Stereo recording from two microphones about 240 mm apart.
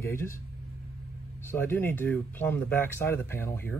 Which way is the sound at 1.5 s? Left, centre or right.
Centre.